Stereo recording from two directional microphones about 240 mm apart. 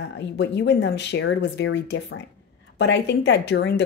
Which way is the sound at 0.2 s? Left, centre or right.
Left.